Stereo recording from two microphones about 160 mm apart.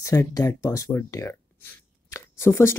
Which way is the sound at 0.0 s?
20° left (ahead or behind).